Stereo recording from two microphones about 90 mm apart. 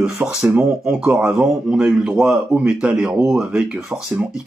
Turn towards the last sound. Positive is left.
turn(degrees=-10)  # may be behind; listen again after turning